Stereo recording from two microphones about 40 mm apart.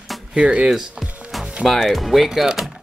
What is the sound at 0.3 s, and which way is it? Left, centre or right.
Speech, right.